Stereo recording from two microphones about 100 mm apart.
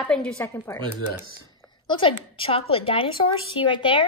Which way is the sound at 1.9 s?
60° left (ahead or behind).